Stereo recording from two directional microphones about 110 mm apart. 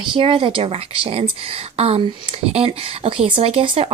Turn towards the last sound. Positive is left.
turn(degrees=-60)  # may be behind; listen again after turning